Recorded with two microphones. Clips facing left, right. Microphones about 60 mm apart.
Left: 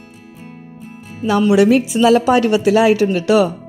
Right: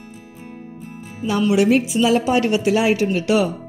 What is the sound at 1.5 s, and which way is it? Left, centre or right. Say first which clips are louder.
Speech: left 3 dB; left.